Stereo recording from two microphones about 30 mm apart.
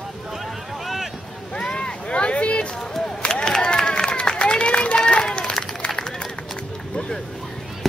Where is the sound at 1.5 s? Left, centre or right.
Left.